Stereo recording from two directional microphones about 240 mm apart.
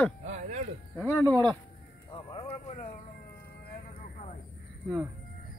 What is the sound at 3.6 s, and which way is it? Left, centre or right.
Vehicle, left.